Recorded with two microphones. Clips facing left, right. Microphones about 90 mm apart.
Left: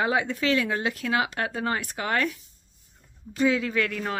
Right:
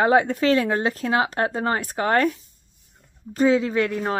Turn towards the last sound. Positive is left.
turn(degrees=-25)  # may be behind; listen again after turning